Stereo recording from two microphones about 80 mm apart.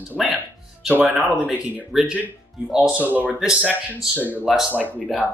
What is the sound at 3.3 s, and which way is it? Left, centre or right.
Speech, centre.